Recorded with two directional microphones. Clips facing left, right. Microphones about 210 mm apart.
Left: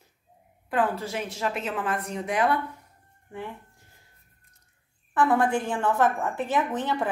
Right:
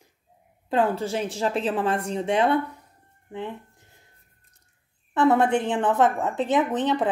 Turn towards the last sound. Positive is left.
turn(degrees=-20)  # may be behind; listen again after turning